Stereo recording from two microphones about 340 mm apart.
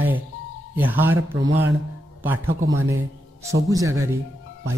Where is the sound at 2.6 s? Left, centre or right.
Right.